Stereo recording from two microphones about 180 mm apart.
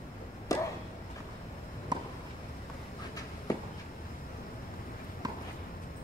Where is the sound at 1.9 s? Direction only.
25° right (ahead or behind).